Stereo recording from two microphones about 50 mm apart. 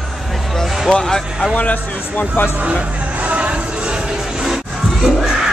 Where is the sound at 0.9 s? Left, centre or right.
Centre.